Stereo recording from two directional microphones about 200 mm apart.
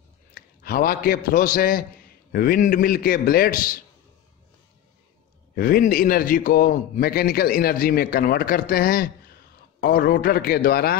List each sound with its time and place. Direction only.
0.3 s a man's voice: 45° left (ahead or behind)
5.6 s a man's voice: 45° left (ahead or behind)